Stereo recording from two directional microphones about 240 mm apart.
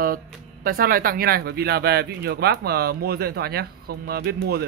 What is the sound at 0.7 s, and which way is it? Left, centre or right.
Speech, right.